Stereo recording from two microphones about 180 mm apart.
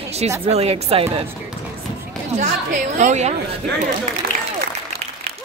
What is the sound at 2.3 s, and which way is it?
A woman's voice, 40° right (ahead or behind).